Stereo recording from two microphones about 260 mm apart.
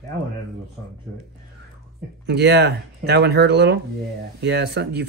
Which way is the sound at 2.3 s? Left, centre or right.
Right.